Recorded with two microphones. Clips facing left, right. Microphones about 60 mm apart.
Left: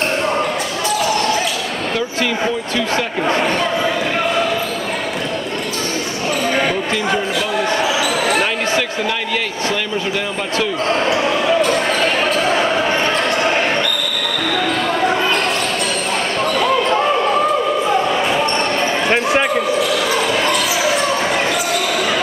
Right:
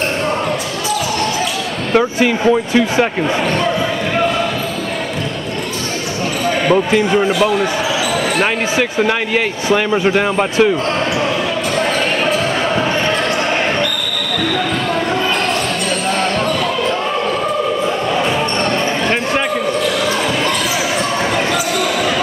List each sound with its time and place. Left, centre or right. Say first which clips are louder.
2.1 s speech: right 6 dB; right
8.4 s speech: right 2 dB; centre
10.0 s a man's voice: right 7 dB; right
19.0 s basketball bounce: left 1 dB; centre